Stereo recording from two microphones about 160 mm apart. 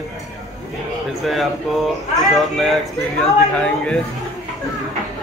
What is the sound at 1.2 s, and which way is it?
A man's voice, centre (ahead or behind).